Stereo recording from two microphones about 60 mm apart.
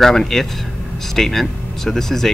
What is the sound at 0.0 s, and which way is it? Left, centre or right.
Speech, centre.